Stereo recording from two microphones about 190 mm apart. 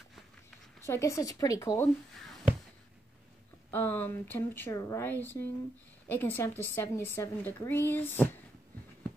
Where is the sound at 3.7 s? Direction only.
10° left (ahead or behind).